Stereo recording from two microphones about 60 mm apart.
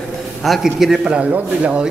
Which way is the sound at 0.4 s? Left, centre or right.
Centre.